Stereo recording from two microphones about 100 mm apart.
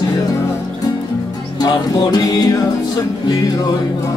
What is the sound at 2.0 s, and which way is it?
Music, 45° left (ahead or behind).